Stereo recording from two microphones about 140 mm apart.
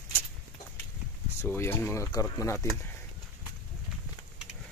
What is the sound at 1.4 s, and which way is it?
Speech, 15° left (ahead or behind).